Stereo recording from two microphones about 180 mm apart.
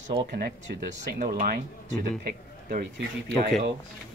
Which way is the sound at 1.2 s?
50° right (ahead or behind).